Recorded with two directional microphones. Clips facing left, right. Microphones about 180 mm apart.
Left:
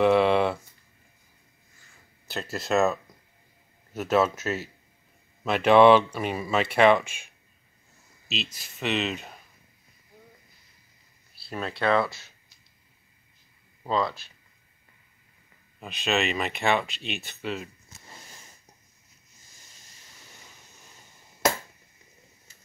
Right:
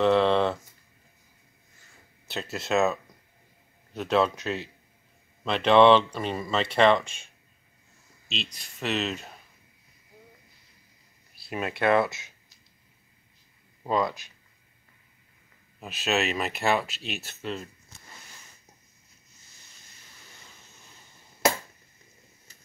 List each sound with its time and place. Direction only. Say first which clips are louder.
0.0 s a sound: left 1 dB; 10° left (ahead or behind)
2.2 s speech: left 1 dB; centre (ahead or behind)
8.3 s speech: left 2 dB; 5° left (ahead or behind)
11.4 s speech: right 1 dB; 20° right (ahead or behind)
13.8 s speech: right 1 dB; 15° right (ahead or behind)
15.8 s speech: even; 5° right (ahead or behind)